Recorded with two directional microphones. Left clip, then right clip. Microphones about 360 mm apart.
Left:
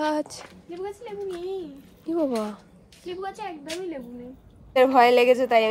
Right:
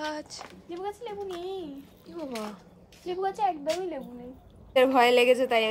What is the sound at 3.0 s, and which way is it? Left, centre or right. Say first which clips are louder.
Speech: right 5 dB; right.